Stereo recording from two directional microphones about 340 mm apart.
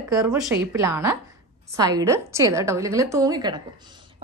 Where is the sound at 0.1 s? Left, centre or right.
Centre.